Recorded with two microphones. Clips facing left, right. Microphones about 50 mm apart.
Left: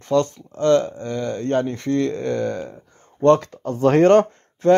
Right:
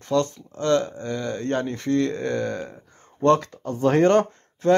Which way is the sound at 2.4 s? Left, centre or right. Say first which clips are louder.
Left 3 dB; centre.